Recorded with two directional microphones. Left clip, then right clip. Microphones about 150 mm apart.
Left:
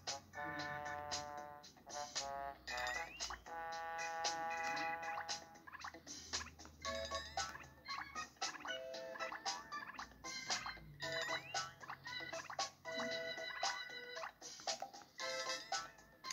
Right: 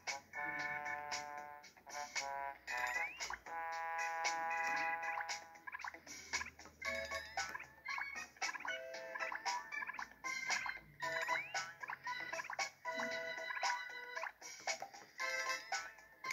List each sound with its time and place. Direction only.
0.0 s music: 30° left (ahead or behind)